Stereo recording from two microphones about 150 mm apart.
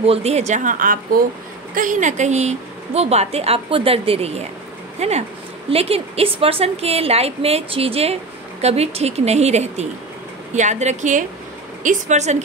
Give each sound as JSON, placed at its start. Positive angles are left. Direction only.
{"t": 0.0, "sound": "a woman's voice", "side_deg": -40}